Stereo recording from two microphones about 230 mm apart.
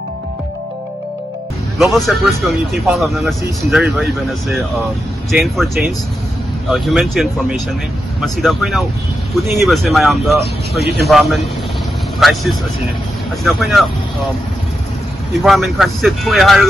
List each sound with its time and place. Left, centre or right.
1.8 s speech: centre
10.8 s speech: right
11.1 s speech: centre
15.4 s speech: centre